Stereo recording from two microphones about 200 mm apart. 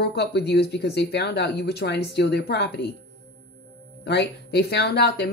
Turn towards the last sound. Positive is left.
turn(degrees=55)  # may be behind; listen again after turning